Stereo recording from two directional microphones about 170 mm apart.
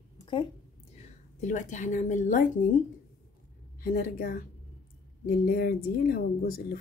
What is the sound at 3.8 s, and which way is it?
Speech, 55° left (ahead or behind).